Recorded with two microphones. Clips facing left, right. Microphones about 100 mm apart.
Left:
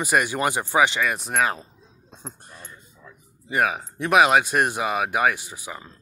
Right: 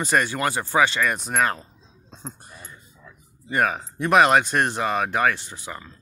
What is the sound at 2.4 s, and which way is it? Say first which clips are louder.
Speech: even; 5° right (ahead or behind).